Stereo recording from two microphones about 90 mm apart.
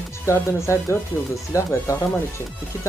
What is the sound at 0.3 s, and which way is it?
Speech, 30° left (ahead or behind).